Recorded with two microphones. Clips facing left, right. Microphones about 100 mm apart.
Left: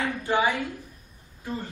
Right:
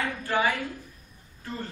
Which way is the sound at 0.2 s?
20° left (ahead or behind).